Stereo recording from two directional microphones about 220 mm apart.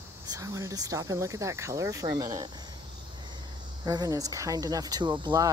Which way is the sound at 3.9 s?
15° right (ahead or behind).